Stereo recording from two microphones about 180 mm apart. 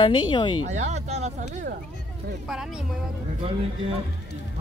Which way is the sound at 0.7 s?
40° right (ahead or behind).